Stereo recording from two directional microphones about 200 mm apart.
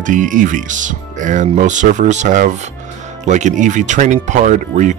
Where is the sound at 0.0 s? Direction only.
40° right (ahead or behind).